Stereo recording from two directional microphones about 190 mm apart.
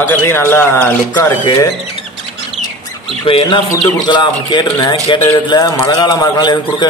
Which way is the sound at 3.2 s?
25° left (ahead or behind).